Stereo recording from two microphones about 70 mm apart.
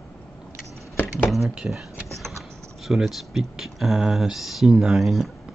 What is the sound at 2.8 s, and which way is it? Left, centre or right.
Speech, centre.